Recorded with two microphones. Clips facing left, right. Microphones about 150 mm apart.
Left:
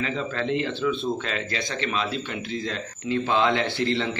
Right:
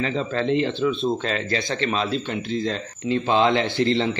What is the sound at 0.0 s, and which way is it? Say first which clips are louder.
Speech: right 4 dB; 30° right (ahead or behind).